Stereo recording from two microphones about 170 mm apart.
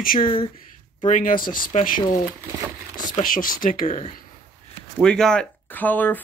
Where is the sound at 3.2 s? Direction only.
55° left (ahead or behind).